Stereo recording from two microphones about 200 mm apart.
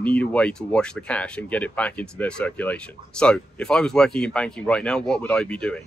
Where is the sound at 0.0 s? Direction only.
5° left (ahead or behind).